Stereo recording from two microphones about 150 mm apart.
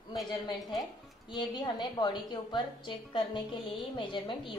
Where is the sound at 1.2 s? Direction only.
30° left (ahead or behind).